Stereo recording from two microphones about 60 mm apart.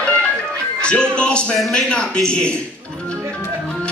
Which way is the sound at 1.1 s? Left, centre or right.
Centre.